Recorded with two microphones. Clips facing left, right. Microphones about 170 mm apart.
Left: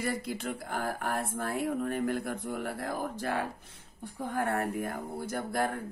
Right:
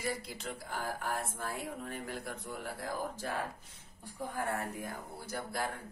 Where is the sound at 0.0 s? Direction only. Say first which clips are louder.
Left 5 dB; 55° left (ahead or behind).